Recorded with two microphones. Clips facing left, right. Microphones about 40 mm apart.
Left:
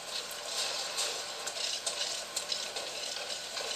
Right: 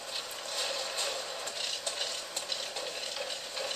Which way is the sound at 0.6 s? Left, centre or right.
Right.